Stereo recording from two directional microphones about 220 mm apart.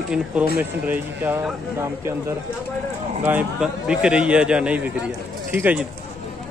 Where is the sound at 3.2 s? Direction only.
10° right (ahead or behind).